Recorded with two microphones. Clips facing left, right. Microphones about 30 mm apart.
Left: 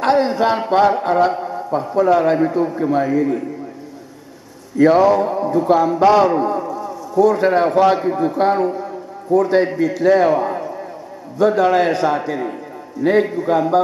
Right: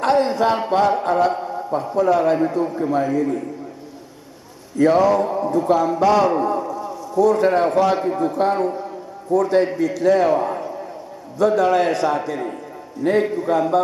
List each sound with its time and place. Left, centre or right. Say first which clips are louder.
0.0 s a sound: left 2 dB; left
0.9 s a man's voice: left 2 dB; left
4.7 s a man's voice: left 3 dB; left
6.2 s a man's voice: left 2 dB; centre
6.8 s a sound: left 4 dB; centre
7.3 s a man's voice: left 2 dB; left
11.3 s a man's voice: left 2 dB; left